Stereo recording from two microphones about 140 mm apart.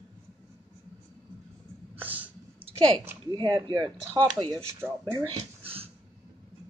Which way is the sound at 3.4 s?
30° right (ahead or behind).